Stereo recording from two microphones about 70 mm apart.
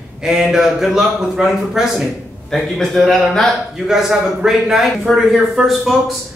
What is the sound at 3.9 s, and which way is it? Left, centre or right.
A man's voice, centre.